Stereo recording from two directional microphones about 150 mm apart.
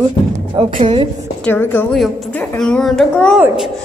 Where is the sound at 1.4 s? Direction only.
15° left (ahead or behind).